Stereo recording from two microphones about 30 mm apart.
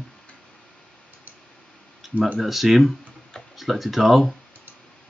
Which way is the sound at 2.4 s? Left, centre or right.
Centre.